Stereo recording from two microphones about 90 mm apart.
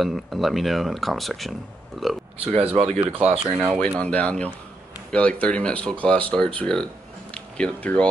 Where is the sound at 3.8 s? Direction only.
15° left (ahead or behind).